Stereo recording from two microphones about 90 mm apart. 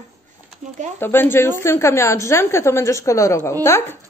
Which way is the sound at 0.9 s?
25° left (ahead or behind).